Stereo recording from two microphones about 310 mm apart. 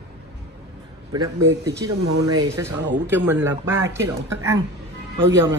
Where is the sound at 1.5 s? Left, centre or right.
Right.